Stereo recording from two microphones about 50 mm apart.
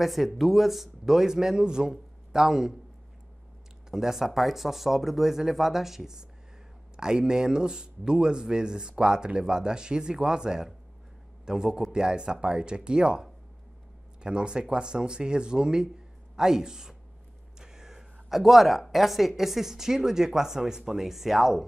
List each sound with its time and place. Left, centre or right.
0.0 s speech: centre
3.9 s speech: centre